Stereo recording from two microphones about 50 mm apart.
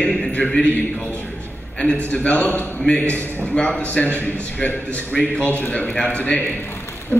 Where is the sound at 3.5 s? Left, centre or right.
Left.